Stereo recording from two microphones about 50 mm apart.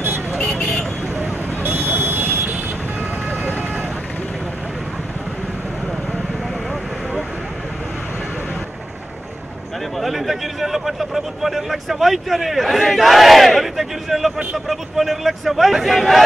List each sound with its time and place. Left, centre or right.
1.1 s vehicle: right
9.9 s a sound: centre
14.7 s a man's voice: centre